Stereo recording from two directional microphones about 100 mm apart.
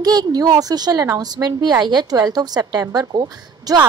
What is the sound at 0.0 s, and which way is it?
A woman's voice, 40° right (ahead or behind).